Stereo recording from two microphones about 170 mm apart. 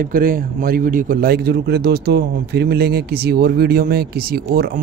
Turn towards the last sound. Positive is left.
turn(degrees=-65)  # may be behind; listen again after turning